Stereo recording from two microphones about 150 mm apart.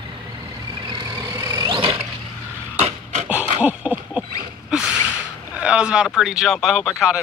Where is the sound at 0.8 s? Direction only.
30° right (ahead or behind).